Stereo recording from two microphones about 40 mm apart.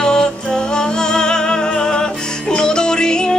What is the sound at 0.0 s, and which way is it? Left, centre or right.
Music, centre.